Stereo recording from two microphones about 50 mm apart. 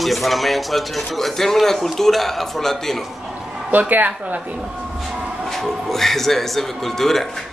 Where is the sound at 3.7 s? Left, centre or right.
Right.